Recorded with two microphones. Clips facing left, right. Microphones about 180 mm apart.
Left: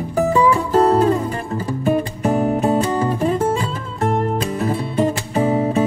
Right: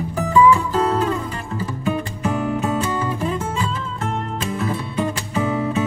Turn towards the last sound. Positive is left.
turn(degrees=35)  # may be behind; listen again after turning